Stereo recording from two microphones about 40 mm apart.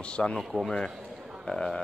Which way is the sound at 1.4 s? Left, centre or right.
Centre.